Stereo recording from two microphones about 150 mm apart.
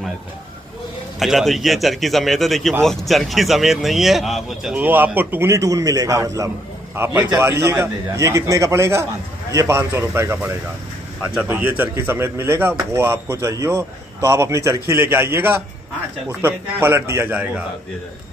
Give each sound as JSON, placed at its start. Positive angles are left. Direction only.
{"t": 1.2, "sound": "speech", "side_deg": 0}
{"t": 4.8, "sound": "a man's voice", "side_deg": -10}